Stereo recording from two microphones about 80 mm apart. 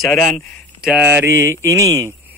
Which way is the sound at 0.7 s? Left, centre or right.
Centre.